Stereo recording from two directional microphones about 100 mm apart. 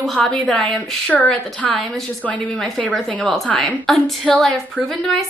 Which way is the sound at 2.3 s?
15° left (ahead or behind).